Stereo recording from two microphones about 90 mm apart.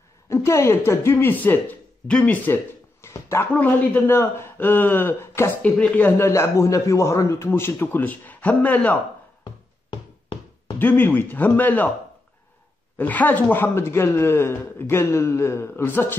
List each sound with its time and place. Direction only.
0.3 s a man's voice: 30° left (ahead or behind)
5.6 s a man's voice: 15° left (ahead or behind)
9.4 s music: 50° left (ahead or behind)
10.8 s a man's voice: 25° left (ahead or behind)
12.9 s a man's voice: 20° left (ahead or behind)